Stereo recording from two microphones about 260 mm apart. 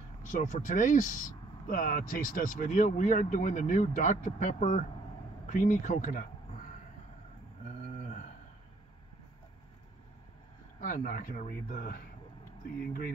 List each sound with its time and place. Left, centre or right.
0.3 s speech: left
10.8 s speech: left